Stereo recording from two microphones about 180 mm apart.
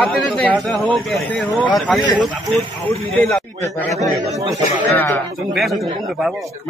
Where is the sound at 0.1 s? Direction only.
5° left (ahead or behind).